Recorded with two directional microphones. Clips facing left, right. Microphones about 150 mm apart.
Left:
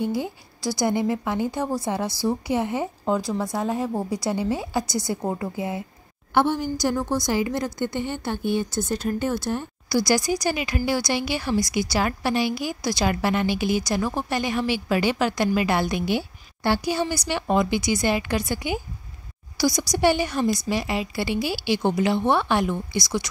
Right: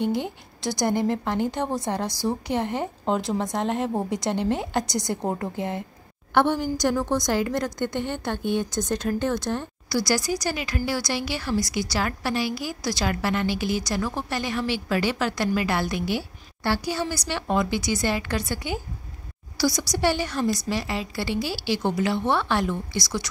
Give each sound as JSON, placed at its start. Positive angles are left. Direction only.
{"t": 0.7, "sound": "a woman's voice", "side_deg": 10}
{"t": 1.6, "sound": "a woman's voice", "side_deg": -20}
{"t": 2.4, "sound": "a woman's voice", "side_deg": 10}
{"t": 3.1, "sound": "speech", "side_deg": -20}
{"t": 3.5, "sound": "a woman's voice", "side_deg": 5}